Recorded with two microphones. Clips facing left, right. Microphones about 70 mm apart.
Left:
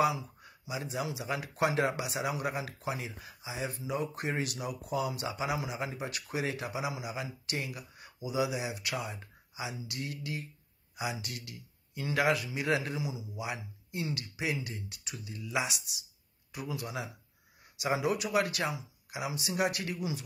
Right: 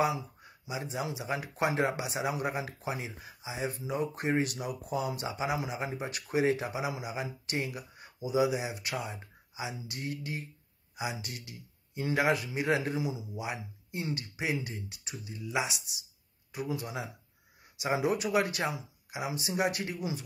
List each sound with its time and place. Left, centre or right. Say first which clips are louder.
0.7 s speech: even; right
9.7 s speech: right 2 dB; right
11.0 s speech: even; right
16.5 s speech: right 2 dB; right
17.8 s speech: right 1 dB; right